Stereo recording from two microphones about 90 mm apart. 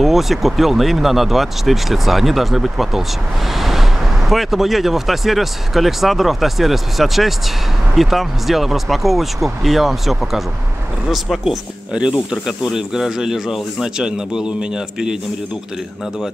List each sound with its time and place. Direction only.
0.0 s speech: centre (ahead or behind)
3.5 s vehicle: centre (ahead or behind)
4.3 s speech: centre (ahead or behind)